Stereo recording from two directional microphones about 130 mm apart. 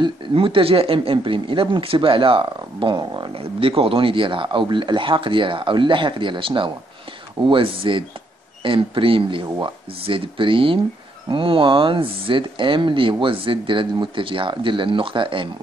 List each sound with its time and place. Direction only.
0.0 s speech: 45° right (ahead or behind)